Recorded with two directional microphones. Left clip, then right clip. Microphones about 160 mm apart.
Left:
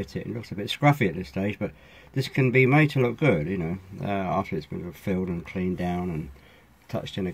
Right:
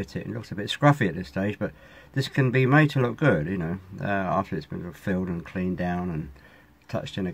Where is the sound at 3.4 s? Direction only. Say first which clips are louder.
Left 1 dB; 30° right (ahead or behind).